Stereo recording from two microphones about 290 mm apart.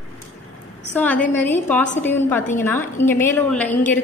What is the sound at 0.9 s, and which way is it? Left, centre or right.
A woman's voice, centre.